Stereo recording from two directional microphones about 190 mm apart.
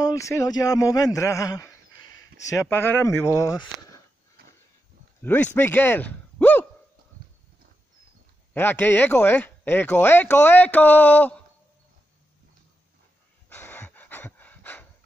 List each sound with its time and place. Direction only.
0.0 s speech: 15° left (ahead or behind)
5.2 s speech: 10° left (ahead or behind)
8.5 s speech: 10° left (ahead or behind)
13.5 s breathing: 10° left (ahead or behind)